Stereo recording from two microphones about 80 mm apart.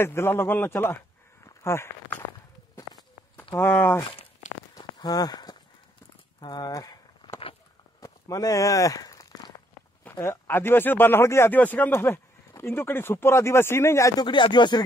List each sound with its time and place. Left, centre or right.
0.0 s a man's voice: left
3.5 s a man's voice: left
4.7 s walk: left
6.4 s speech: left
6.7 s speech: left
8.0 s walk: left
10.1 s speech: left
14.1 s speech: left